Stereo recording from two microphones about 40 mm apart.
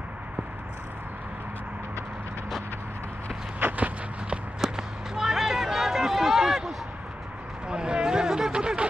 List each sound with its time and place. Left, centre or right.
3.5 s walk: right
4.6 s run: centre
7.6 s a sound: right